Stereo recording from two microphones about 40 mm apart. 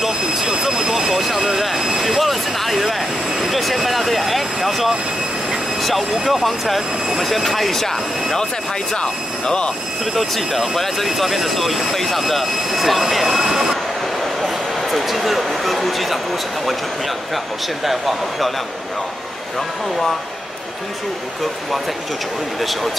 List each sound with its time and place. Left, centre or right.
0.0 s jet engine: centre
1.1 s speech: centre
1.8 s vehicle: centre
2.0 s speech: centre
5.8 s vehicle: centre
6.2 s speech: centre
8.9 s speech: centre
10.1 s speech: centre
17.8 s speech: centre